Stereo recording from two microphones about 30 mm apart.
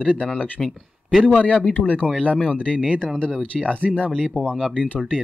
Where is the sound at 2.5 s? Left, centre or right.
Left.